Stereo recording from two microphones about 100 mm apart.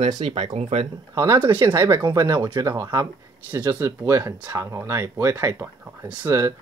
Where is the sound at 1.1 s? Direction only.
30° right (ahead or behind).